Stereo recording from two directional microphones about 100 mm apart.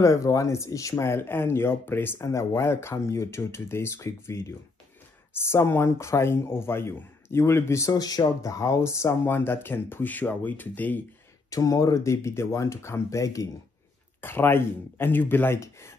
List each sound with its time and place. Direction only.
0.0 s speech: 35° left (ahead or behind); by 11.0 s 15° left (ahead or behind)
11.5 s speech: 35° left (ahead or behind)
14.2 s speech: 25° left (ahead or behind)